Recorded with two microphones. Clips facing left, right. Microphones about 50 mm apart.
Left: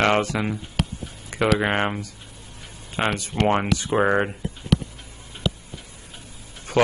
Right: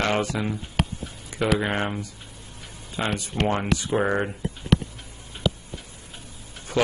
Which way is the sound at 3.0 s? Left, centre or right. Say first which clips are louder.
Left 3 dB; left.